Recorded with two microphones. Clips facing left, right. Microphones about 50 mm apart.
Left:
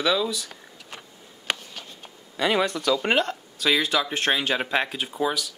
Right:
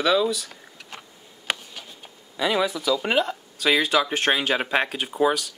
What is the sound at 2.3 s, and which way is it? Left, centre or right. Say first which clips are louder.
Speech: even; centre.